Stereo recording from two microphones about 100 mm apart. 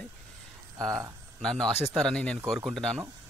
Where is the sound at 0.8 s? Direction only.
35° right (ahead or behind).